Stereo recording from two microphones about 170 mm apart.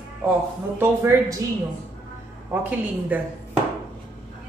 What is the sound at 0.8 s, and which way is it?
Speech, 15° right (ahead or behind).